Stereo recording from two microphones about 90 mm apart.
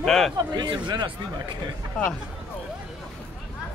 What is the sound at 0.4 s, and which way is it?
Speech, 55° right (ahead or behind).